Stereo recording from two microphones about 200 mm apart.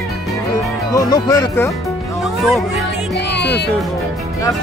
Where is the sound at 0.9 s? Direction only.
15° left (ahead or behind).